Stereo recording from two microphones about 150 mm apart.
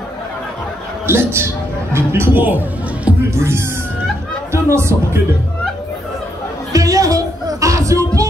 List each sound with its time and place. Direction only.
1.0 s a man's voice: 15° right (ahead or behind)
6.7 s music: 20° right (ahead or behind)